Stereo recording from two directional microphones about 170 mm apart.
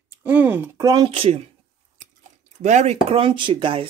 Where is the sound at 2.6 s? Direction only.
45° right (ahead or behind).